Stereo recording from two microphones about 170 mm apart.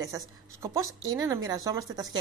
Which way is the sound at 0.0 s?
20° right (ahead or behind).